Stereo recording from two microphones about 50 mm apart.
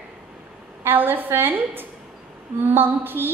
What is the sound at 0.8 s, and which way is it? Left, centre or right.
A woman's voice, right.